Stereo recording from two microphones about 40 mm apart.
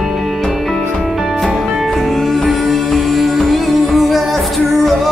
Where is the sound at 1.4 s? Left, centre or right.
Centre.